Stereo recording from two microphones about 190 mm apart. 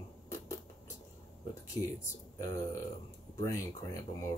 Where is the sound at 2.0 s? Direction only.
15° left (ahead or behind).